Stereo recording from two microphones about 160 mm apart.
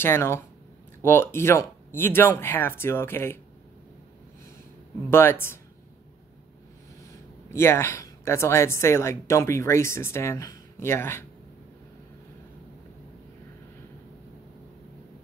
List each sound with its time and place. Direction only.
0.0 s speech: 15° left (ahead or behind)
5.1 s speech: 15° left (ahead or behind)
7.5 s speech: 15° left (ahead or behind)